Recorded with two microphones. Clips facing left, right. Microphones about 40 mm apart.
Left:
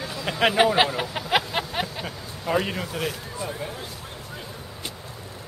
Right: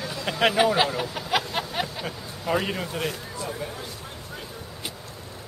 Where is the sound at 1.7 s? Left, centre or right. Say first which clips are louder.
Even; centre.